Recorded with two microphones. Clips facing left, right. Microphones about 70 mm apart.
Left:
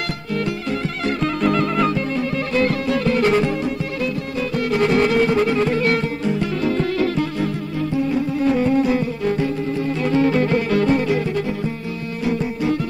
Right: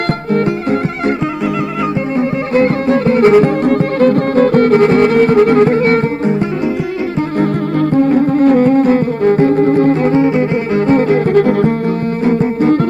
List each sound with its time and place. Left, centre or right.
0.3 s music: right
2.1 s music: right
3.6 s music: right
7.9 s music: right
10.1 s music: right
10.9 s music: right